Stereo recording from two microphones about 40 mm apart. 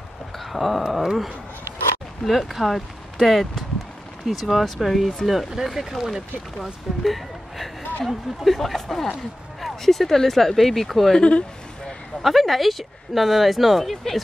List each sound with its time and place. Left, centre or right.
0.4 s a sound: centre
2.2 s speech: centre
11.1 s speech: left
12.2 s speech: centre